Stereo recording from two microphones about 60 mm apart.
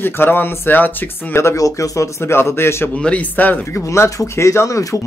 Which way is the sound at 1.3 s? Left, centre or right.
Left.